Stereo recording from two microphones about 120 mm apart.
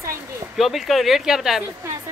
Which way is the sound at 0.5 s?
Centre (ahead or behind).